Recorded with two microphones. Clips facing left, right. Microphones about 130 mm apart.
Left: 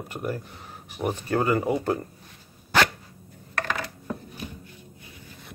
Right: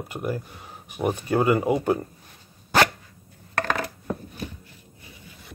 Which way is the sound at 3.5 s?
40° right (ahead or behind).